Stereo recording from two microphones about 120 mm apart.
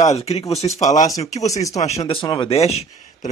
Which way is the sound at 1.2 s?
75° left (ahead or behind).